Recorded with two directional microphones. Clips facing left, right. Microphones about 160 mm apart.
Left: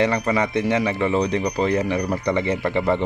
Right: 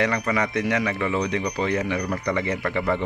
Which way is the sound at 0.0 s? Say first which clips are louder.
Left 3 dB; 30° left (ahead or behind).